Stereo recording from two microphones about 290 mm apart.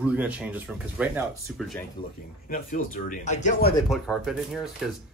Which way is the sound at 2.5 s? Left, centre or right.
Left.